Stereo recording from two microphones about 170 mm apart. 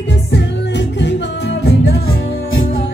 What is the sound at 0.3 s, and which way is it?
Music, 90° left.